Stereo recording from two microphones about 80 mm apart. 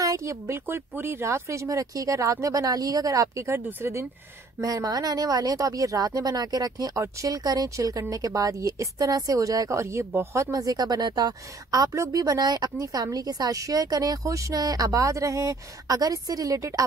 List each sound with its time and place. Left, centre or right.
0.0 s speech: right
0.7 s speech: right
4.6 s speech: right
12.7 s speech: right